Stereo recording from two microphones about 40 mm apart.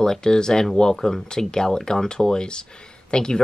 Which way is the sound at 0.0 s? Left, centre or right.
Centre.